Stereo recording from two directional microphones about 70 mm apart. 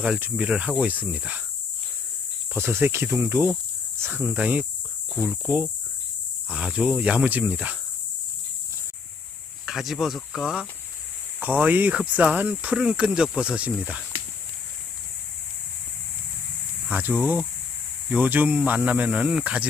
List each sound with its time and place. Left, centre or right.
0.4 s speech: centre
2.5 s speech: right
9.7 s speech: centre
11.4 s speech: right
16.8 s speech: right